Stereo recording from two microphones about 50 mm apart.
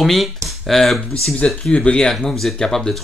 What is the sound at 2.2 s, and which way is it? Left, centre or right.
Speech, centre.